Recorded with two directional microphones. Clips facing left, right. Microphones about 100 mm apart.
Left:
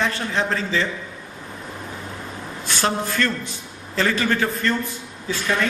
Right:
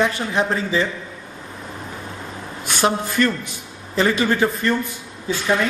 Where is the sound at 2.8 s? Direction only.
15° right (ahead or behind).